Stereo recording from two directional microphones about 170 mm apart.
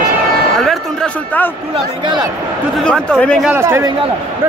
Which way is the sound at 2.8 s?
5° left (ahead or behind).